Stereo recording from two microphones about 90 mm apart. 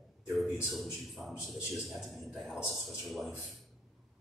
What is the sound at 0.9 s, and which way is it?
A man's voice, centre (ahead or behind).